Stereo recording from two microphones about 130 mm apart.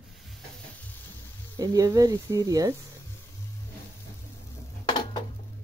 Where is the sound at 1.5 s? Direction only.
25° right (ahead or behind).